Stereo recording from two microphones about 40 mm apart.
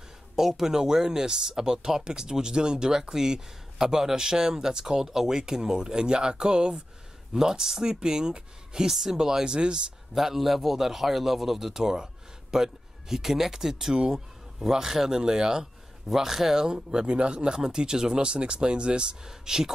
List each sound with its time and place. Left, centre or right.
0.4 s speech: centre
8.9 s speech: centre
10.1 s speech: centre